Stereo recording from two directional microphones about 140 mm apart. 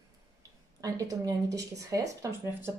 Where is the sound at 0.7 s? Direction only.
25° right (ahead or behind).